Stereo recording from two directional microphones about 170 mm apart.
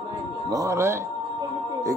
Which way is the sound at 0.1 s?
20° right (ahead or behind).